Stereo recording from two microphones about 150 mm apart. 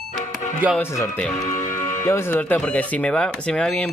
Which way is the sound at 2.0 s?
15° left (ahead or behind).